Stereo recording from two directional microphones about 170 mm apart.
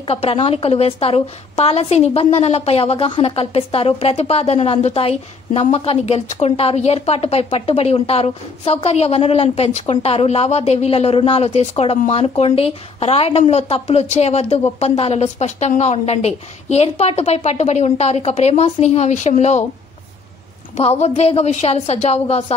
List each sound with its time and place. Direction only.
0.0 s a woman's voice: 35° left (ahead or behind)
20.7 s a woman's voice: 40° left (ahead or behind)